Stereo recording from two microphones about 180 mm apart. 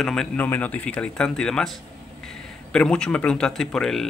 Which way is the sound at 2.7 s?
5° left (ahead or behind).